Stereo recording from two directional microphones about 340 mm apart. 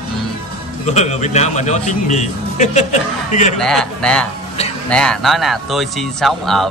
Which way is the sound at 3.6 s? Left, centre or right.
Centre.